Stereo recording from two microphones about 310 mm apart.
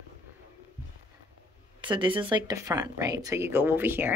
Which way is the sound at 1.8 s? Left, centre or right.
Centre.